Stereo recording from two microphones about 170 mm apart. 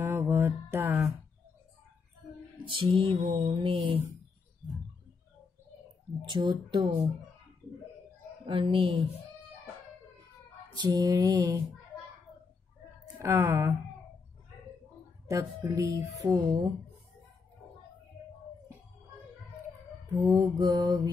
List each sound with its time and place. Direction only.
0.0 s music: 15° right (ahead or behind)
2.6 s music: 30° right (ahead or behind)
6.2 s speech: 30° right (ahead or behind)
8.5 s music: 30° right (ahead or behind)
10.8 s speech: 20° right (ahead or behind)
13.2 s speech: 15° right (ahead or behind)
15.2 s speech: 20° right (ahead or behind)
20.2 s speech: 20° right (ahead or behind)